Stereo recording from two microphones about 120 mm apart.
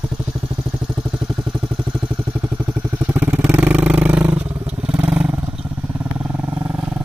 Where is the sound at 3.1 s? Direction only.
15° right (ahead or behind).